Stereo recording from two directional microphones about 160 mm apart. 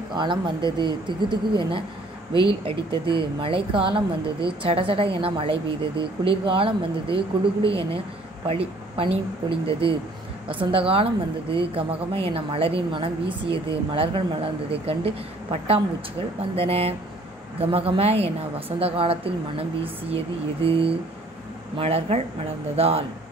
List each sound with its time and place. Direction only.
0.1 s speech: 30° right (ahead or behind)